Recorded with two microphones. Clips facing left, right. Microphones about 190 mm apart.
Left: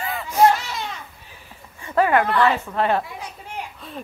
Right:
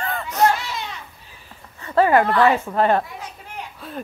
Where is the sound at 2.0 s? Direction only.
35° right (ahead or behind).